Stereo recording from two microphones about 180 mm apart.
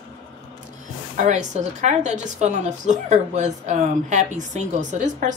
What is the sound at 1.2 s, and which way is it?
A woman's voice, 40° right (ahead or behind).